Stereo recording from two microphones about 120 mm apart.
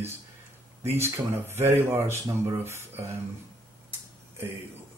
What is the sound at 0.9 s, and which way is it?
Speech, 20° right (ahead or behind).